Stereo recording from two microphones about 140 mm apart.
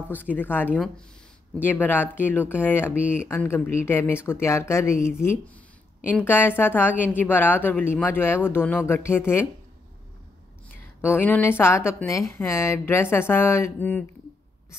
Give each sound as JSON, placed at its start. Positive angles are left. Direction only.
{"t": 0.1, "sound": "a woman's voice", "side_deg": 15}
{"t": 2.9, "sound": "speech", "side_deg": -10}
{"t": 3.3, "sound": "a woman's voice", "side_deg": 15}
{"t": 11.0, "sound": "a woman's voice", "side_deg": 15}